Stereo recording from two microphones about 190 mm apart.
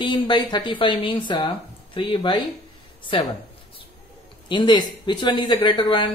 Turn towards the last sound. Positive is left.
turn(degrees=25)  # may be behind; listen again after turning